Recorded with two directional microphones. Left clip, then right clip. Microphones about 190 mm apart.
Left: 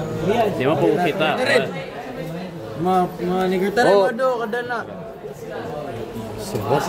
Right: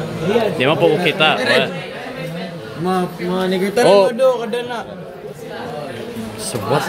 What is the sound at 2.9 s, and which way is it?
Speech, 35° left (ahead or behind).